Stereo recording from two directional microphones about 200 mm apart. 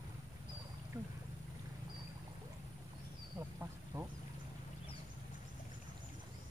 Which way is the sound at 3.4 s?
10° right (ahead or behind).